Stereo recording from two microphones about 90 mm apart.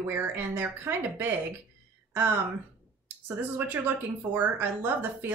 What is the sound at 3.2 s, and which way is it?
Speech, 25° right (ahead or behind).